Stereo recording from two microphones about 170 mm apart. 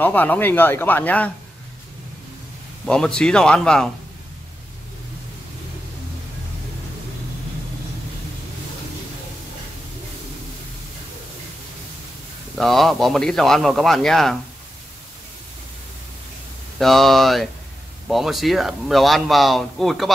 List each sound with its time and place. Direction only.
0.0 s speech: 10° left (ahead or behind)
2.9 s speech: 5° left (ahead or behind)
12.5 s speech: centre (ahead or behind)
16.7 s speech: centre (ahead or behind)